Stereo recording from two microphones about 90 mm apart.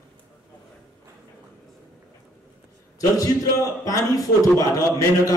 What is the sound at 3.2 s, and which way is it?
A man's voice, 40° left (ahead or behind).